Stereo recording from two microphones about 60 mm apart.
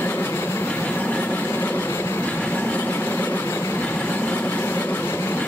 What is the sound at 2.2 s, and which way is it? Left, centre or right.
Train, left.